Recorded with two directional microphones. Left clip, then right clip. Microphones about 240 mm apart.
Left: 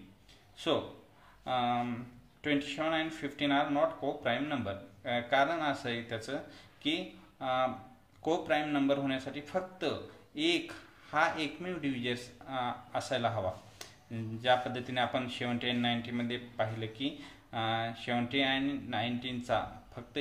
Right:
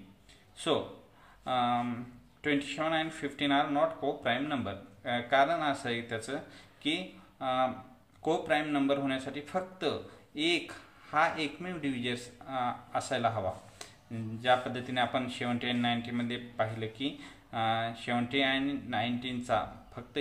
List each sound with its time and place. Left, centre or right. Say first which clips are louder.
1.4 s speech: right 2 dB; centre